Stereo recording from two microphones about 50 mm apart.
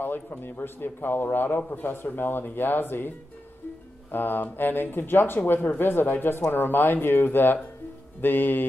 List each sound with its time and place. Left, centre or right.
0.4 s speech: left
4.1 s speech: left
8.2 s music: left